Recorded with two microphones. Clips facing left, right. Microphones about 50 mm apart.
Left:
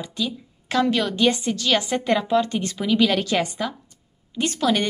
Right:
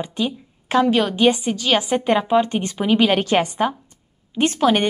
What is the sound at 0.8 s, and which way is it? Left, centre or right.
A woman's voice, centre.